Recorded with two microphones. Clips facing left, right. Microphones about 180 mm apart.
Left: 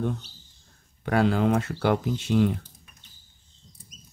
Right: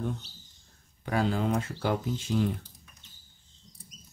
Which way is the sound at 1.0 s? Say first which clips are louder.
Left 6 dB; 75° left (ahead or behind).